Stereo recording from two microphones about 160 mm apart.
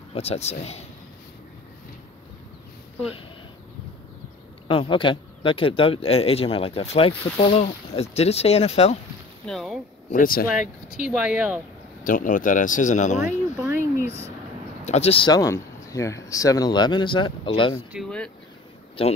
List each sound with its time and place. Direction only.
0.1 s speech: 40° left (ahead or behind)
4.6 s speech: 30° left (ahead or behind)
9.5 s speech: centre (ahead or behind)
10.1 s speech: 65° left (ahead or behind)
11.1 s speech: 5° right (ahead or behind)
12.0 s speech: 55° left (ahead or behind)
13.7 s a sound: 15° right (ahead or behind)
14.9 s speech: 40° left (ahead or behind)
17.9 s speech: 5° left (ahead or behind)
19.0 s speech: 35° left (ahead or behind)